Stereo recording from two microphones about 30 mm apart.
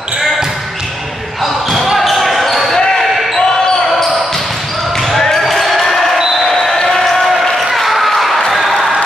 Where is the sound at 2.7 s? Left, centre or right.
Centre.